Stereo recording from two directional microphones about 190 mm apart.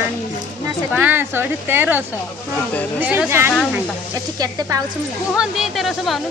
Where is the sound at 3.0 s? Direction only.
10° right (ahead or behind).